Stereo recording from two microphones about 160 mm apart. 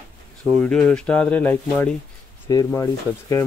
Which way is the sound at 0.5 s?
5° left (ahead or behind).